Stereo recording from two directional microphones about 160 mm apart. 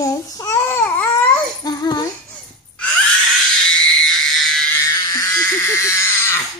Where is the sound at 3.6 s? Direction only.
5° left (ahead or behind).